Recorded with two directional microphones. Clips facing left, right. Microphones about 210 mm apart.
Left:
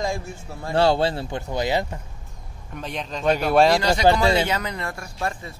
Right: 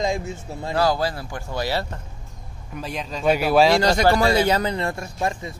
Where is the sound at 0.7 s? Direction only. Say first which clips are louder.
Left 3 dB; 25° left (ahead or behind).